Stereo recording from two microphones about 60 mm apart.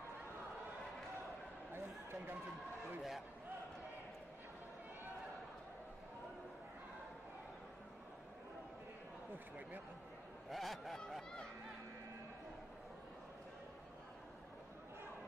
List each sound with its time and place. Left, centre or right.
1.7 s a sound: right
3.0 s a man's voice: centre
10.5 s honk: centre